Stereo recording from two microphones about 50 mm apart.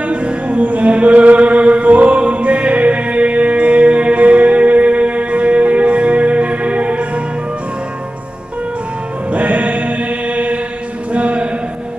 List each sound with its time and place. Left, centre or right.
0.0 s music: right
9.3 s music: right
11.1 s a sound: right